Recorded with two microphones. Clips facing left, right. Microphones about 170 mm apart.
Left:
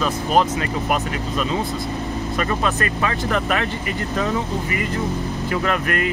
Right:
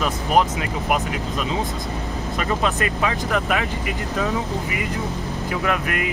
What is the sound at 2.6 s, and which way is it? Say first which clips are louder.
Speech: even; 15° right (ahead or behind).